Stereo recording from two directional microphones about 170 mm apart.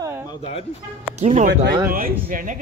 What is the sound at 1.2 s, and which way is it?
Speech, 45° right (ahead or behind).